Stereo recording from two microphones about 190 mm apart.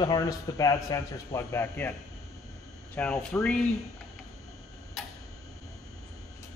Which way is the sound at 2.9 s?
5° left (ahead or behind).